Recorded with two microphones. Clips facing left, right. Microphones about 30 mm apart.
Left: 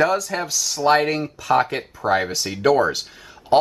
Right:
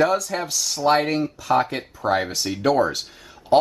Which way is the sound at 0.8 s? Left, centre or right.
Centre.